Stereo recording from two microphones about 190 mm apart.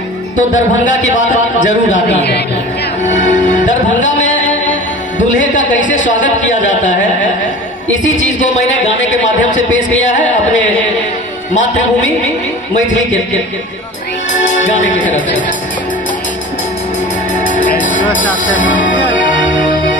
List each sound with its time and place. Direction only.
0.4 s speech: 40° left (ahead or behind)
3.1 s music: 40° left (ahead or behind)
5.4 s speech: 40° left (ahead or behind)
14.4 s speech: 40° left (ahead or behind)
17.4 s music: 40° left (ahead or behind)
19.2 s music: 45° left (ahead or behind)